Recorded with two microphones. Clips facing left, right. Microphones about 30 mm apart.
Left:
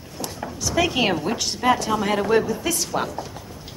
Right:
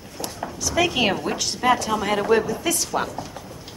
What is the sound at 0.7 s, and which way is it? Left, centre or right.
Speech, centre.